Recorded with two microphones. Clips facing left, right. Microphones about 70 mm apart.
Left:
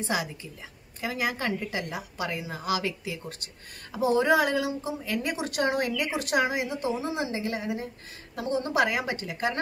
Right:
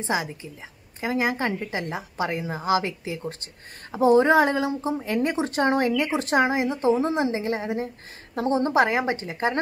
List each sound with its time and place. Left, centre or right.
0.0 s a woman's voice: right